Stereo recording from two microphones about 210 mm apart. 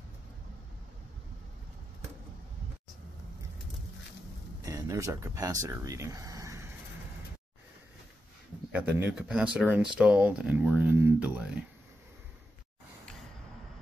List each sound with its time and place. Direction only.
4.6 s speech: 15° right (ahead or behind)
8.7 s speech: 5° right (ahead or behind)